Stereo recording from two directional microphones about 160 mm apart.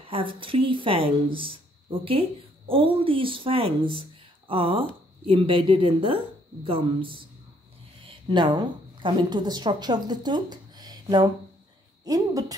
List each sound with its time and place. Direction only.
0.0 s a woman's voice: 35° right (ahead or behind)